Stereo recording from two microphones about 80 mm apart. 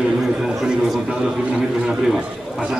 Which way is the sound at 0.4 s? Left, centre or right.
Centre.